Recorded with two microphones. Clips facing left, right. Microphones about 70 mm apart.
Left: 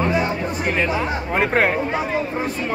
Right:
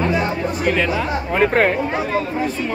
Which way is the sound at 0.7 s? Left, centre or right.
Left.